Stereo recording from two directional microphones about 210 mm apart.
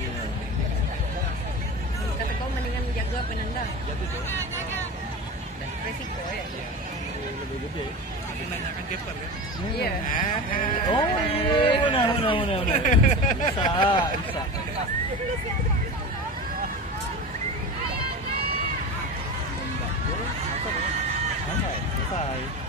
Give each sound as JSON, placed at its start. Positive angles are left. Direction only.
{"t": 10.9, "sound": "speech", "side_deg": 25}
{"t": 12.6, "sound": "speech", "side_deg": 35}
{"t": 13.6, "sound": "speech", "side_deg": 25}